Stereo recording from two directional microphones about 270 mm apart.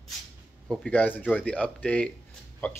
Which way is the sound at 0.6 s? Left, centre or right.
Centre.